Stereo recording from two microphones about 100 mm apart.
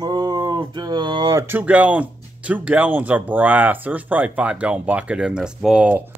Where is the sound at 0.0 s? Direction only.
40° right (ahead or behind).